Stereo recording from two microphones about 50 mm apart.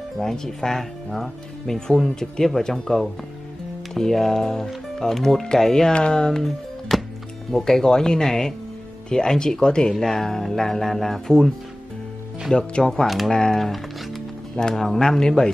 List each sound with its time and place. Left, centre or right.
0.2 s speech: centre
12.5 s speech: centre
13.0 s speech: centre
13.3 s speech: centre
13.6 s music: centre
14.6 s speech: centre